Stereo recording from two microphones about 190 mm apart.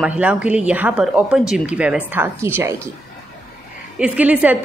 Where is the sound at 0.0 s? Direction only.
5° right (ahead or behind).